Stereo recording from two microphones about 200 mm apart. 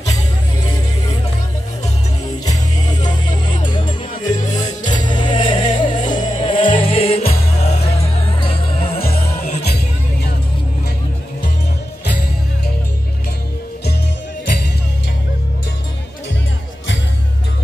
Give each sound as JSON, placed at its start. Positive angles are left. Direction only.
{"t": 2.4, "sound": "music", "side_deg": 20}
{"t": 4.5, "sound": "music", "side_deg": 35}
{"t": 4.8, "sound": "music", "side_deg": 25}
{"t": 9.0, "sound": "music", "side_deg": 50}